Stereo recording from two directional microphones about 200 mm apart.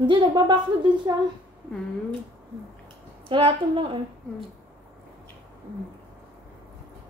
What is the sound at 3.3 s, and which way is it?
Speech, 25° right (ahead or behind).